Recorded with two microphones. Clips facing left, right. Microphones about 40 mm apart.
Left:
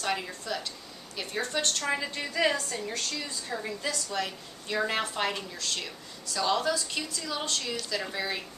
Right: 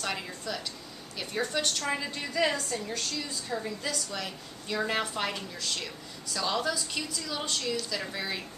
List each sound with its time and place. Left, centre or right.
0.0 s a woman's voice: centre